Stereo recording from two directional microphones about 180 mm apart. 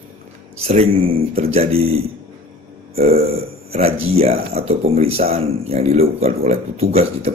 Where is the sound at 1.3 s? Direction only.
35° right (ahead or behind).